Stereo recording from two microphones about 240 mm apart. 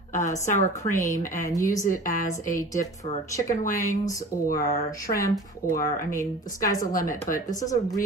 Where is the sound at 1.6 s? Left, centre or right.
Centre.